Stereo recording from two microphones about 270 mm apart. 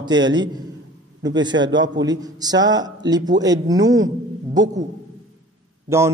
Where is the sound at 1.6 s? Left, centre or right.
Centre.